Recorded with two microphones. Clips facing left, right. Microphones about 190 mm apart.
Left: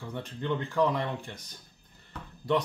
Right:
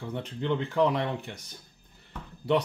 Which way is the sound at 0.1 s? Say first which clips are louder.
Right 2 dB; 15° right (ahead or behind).